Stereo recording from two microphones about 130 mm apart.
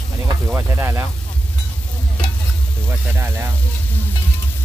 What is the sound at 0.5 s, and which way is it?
Speech, 20° right (ahead or behind).